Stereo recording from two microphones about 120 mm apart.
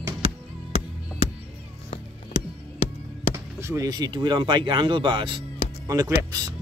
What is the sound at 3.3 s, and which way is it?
Speech, 25° right (ahead or behind).